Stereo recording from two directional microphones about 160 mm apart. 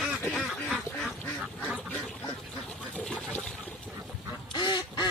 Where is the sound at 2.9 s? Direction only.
10° left (ahead or behind).